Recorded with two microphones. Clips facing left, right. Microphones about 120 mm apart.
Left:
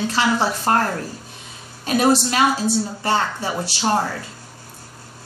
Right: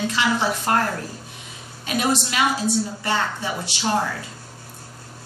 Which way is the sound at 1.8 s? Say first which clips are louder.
Left 6 dB; 35° left (ahead or behind).